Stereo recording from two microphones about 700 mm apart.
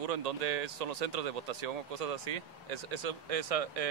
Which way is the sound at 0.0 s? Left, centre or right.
Right.